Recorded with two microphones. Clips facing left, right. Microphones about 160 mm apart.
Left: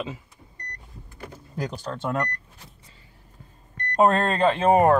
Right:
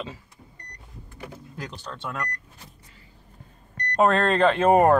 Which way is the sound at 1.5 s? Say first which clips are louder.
Left 8 dB; 40° left (ahead or behind).